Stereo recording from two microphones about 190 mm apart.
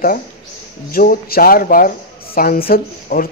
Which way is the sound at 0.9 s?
50° left (ahead or behind).